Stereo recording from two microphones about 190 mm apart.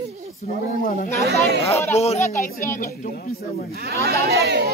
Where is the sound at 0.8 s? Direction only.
45° left (ahead or behind).